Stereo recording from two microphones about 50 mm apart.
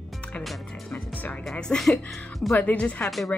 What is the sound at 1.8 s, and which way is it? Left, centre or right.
Speech, centre.